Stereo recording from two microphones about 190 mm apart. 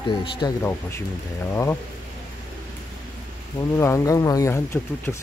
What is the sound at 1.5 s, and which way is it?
Speech, 15° left (ahead or behind).